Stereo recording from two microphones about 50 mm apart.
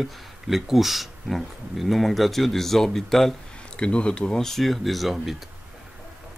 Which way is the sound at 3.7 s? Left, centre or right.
Left.